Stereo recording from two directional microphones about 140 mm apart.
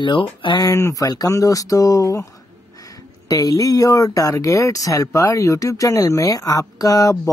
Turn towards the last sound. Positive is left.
turn(degrees=25)  # may be behind; listen again after turning